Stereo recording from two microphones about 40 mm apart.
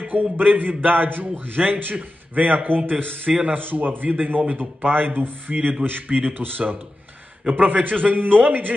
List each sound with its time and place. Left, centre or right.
0.1 s a man's voice: right
6.0 s a man's voice: right
6.3 s a man's voice: right
7.4 s a man's voice: right
7.8 s a man's voice: right